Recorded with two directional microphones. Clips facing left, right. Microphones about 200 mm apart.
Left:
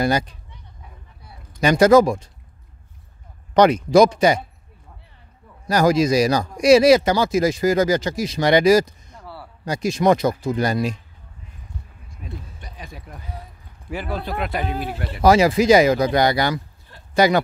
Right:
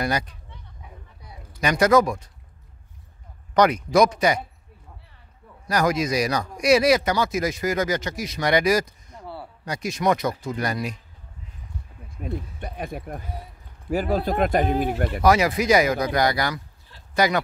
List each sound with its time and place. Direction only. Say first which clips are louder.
0.0 s speech: left 5 dB; 30° left (ahead or behind)
1.2 s a sound: left 1 dB; 15° right (ahead or behind)
1.6 s speech: left 5 dB; 30° left (ahead or behind)
3.5 s speech: left 5 dB; 25° left (ahead or behind)
5.7 s speech: left 6 dB; 30° left (ahead or behind)
9.1 s a sound: right 3 dB; 20° right (ahead or behind)
9.7 s speech: left 5 dB; 30° left (ahead or behind)
12.2 s speech: right 7 dB; 55° right (ahead or behind)
13.8 s speech: right 5 dB; 40° right (ahead or behind)
15.2 s speech: left 5 dB; 30° left (ahead or behind)